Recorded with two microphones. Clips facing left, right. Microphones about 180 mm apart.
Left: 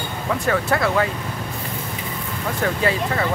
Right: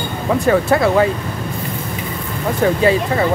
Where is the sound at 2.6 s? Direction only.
20° right (ahead or behind).